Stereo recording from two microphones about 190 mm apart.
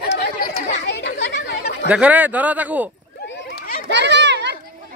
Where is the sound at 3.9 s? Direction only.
65° right (ahead or behind).